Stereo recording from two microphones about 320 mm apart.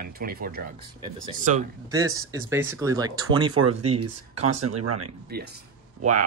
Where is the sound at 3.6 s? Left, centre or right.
Right.